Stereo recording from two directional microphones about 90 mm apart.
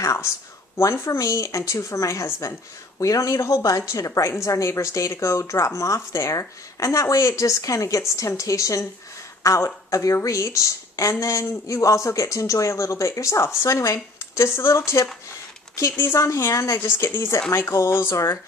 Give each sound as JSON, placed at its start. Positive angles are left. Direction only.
{"t": 0.0, "sound": "speech", "side_deg": 35}
{"t": 16.8, "sound": "speech", "side_deg": 25}